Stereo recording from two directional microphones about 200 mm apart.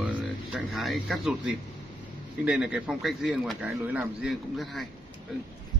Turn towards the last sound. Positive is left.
turn(degrees=0)  # may be behind; listen again after turning